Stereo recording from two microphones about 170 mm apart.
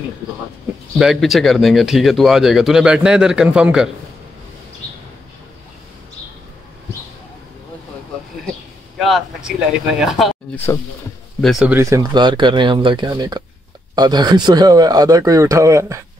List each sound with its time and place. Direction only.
0.9 s speech: centre (ahead or behind)
8.9 s speech: centre (ahead or behind)
11.7 s speech: 20° right (ahead or behind)